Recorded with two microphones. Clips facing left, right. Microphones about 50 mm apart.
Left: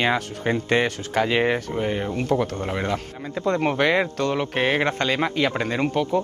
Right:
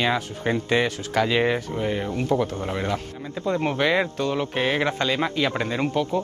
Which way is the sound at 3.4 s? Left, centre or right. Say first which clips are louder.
Left 2 dB; left.